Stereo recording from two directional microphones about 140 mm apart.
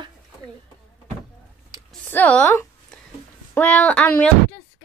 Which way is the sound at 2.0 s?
10° left (ahead or behind).